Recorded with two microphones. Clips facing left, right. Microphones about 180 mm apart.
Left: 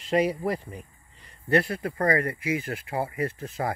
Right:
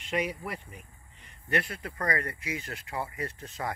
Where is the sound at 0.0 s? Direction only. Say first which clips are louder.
Left 8 dB; 35° left (ahead or behind).